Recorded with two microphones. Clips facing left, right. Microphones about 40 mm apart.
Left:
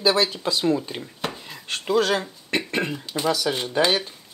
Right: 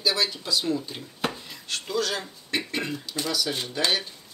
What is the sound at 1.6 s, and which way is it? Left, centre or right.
Speech, left.